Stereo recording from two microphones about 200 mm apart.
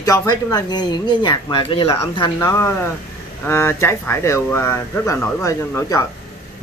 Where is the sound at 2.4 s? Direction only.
15° left (ahead or behind).